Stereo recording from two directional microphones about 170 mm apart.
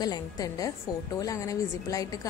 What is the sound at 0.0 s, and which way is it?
A woman's voice, 20° left (ahead or behind).